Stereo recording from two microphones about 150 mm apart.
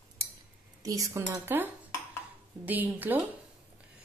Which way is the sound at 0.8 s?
20° right (ahead or behind).